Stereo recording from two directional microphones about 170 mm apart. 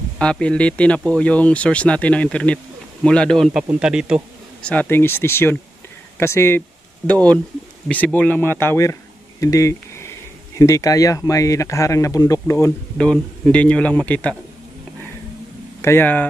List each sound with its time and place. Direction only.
0.2 s speech: 5° left (ahead or behind)
4.6 s speech: 10° left (ahead or behind)
7.9 s speech: 10° left (ahead or behind)
9.4 s a sound: 20° left (ahead or behind)
10.6 s speech: 20° left (ahead or behind)
12.9 s speech: 5° left (ahead or behind)
15.8 s speech: 15° left (ahead or behind)